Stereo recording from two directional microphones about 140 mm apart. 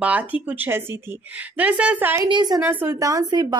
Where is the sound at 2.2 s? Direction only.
30° right (ahead or behind).